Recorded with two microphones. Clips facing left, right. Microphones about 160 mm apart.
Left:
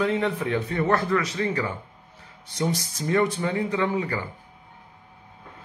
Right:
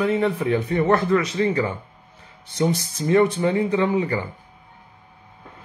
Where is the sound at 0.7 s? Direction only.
20° right (ahead or behind).